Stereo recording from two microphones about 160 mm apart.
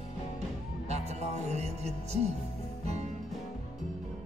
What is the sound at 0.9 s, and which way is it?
Music, 45° right (ahead or behind).